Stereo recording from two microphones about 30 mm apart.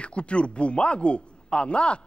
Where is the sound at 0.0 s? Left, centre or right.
Left.